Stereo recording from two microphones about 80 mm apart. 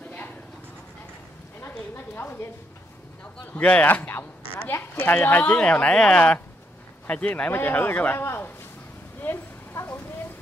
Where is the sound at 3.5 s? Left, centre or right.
Centre.